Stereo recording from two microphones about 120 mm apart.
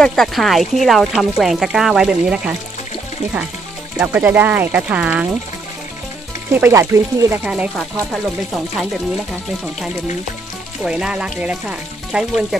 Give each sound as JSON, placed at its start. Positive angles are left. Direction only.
{"t": 0.0, "sound": "speech", "side_deg": 0}
{"t": 3.9, "sound": "speech", "side_deg": -10}
{"t": 6.5, "sound": "speech", "side_deg": -20}
{"t": 7.4, "sound": "speech", "side_deg": -10}
{"t": 7.7, "sound": "speech", "side_deg": 0}
{"t": 10.8, "sound": "speech", "side_deg": -5}